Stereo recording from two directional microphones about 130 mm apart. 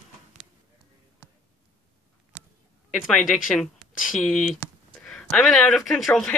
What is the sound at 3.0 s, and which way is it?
Speech, centre (ahead or behind).